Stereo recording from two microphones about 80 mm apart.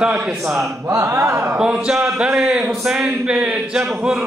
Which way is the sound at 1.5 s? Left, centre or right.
Centre.